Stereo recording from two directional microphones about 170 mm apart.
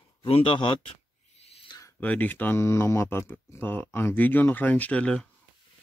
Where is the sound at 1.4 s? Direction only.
35° left (ahead or behind).